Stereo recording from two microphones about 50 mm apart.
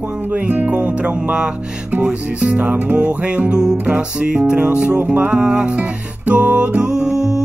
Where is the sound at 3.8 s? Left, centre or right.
Right.